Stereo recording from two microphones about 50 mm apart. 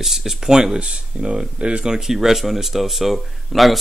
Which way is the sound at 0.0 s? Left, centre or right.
Centre.